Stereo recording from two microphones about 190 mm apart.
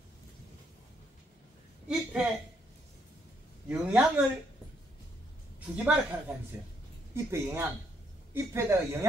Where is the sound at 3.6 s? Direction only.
5° right (ahead or behind).